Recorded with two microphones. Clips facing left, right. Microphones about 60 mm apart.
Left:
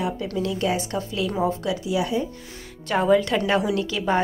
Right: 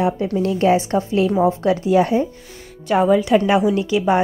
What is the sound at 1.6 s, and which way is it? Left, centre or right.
Speech, right.